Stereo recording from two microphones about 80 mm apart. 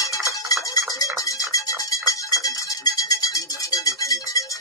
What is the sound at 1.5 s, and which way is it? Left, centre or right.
Music, left.